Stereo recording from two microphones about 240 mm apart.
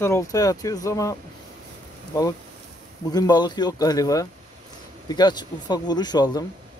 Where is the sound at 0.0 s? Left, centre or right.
Centre.